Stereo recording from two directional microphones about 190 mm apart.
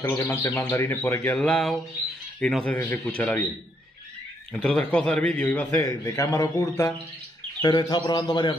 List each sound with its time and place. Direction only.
0.0 s speech: 10° left (ahead or behind)
4.6 s a man's voice: 5° left (ahead or behind); by 8.5 s 25° left (ahead or behind)